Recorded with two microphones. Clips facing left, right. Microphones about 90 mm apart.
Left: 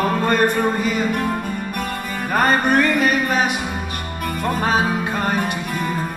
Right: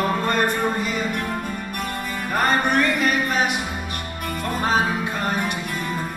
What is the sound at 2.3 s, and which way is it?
Music, 45° left (ahead or behind).